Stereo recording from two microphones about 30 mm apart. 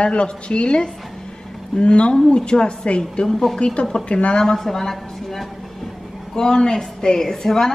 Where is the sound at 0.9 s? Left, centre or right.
Centre.